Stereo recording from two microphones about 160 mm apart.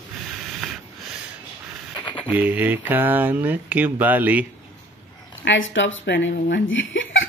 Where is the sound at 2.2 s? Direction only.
10° right (ahead or behind).